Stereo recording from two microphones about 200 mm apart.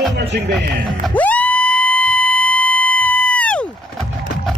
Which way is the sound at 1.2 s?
10° left (ahead or behind).